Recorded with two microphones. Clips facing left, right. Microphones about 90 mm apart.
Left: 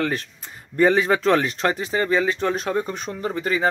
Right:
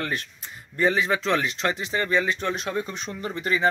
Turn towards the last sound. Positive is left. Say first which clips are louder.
# left 2 dB
turn(degrees=30)  # may be behind; listen again after turning